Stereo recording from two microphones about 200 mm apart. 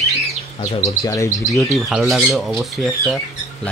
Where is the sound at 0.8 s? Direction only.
15° left (ahead or behind).